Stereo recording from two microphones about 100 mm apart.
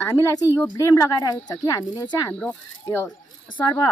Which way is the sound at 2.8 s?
25° left (ahead or behind).